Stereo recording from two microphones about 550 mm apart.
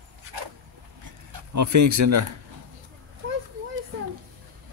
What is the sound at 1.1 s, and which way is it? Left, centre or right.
Speech, right.